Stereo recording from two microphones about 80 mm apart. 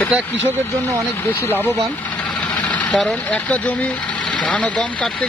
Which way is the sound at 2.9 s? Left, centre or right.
Centre.